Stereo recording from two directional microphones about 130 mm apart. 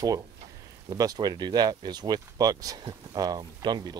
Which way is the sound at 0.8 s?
30° right (ahead or behind).